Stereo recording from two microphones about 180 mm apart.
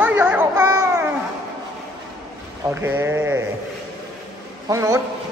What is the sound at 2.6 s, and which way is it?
Speech, 10° right (ahead or behind).